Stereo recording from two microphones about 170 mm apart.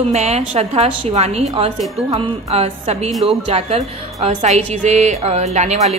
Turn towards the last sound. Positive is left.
turn(degrees=-40)  # may be behind; listen again after turning